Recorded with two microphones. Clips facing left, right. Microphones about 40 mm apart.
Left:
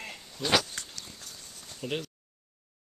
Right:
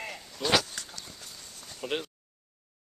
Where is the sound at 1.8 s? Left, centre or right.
Right.